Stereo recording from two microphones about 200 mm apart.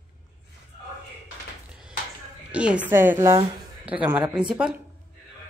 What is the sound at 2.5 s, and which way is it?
A woman's voice, 5° right (ahead or behind).